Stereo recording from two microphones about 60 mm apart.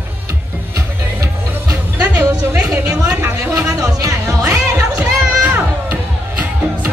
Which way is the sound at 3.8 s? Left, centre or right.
Right.